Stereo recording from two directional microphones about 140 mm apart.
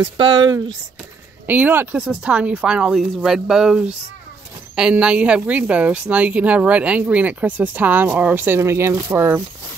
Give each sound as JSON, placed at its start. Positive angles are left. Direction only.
{"t": 0.0, "sound": "speech", "side_deg": -35}
{"t": 1.5, "sound": "speech", "side_deg": -15}